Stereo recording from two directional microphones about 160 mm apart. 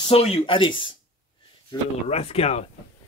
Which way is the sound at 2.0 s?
40° left (ahead or behind).